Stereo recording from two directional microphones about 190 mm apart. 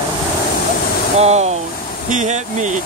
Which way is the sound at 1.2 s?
35° right (ahead or behind).